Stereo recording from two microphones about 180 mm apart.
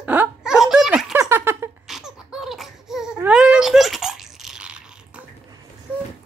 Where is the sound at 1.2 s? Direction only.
15° right (ahead or behind).